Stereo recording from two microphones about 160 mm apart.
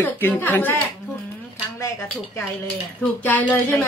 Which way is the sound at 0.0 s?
10° left (ahead or behind).